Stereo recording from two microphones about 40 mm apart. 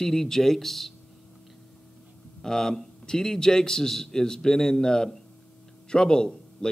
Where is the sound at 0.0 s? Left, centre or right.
Centre.